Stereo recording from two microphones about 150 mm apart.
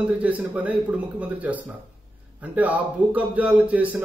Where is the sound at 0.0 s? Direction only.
10° right (ahead or behind).